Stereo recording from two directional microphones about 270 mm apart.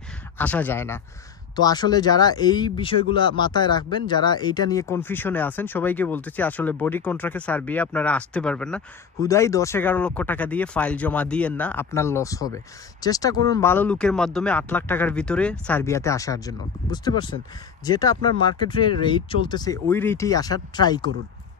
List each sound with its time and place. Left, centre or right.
0.4 s speech: centre